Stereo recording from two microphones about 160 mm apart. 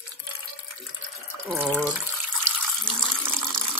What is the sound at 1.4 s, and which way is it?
Speech, 10° right (ahead or behind).